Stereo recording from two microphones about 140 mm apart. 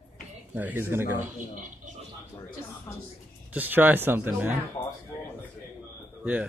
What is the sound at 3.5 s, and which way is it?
Speech, 10° right (ahead or behind).